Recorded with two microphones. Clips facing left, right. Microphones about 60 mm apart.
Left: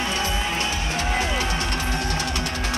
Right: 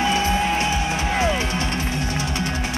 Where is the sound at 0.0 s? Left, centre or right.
Right.